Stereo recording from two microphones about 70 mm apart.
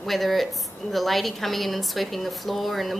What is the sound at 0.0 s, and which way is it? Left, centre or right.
A woman's voice, centre.